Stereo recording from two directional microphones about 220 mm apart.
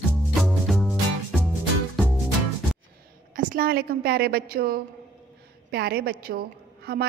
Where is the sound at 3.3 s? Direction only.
40° right (ahead or behind).